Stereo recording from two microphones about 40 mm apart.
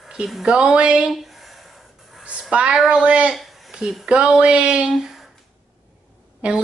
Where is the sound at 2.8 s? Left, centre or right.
Right.